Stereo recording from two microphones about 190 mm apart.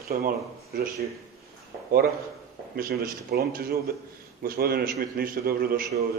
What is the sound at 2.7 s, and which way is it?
A man's voice, 50° right (ahead or behind).